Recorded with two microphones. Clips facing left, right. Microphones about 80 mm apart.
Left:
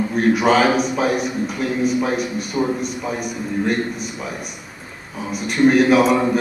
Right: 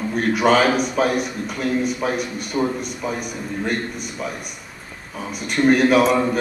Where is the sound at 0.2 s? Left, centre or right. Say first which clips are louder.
Left 1 dB; centre.